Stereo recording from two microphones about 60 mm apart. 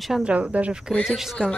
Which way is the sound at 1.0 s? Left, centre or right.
Centre.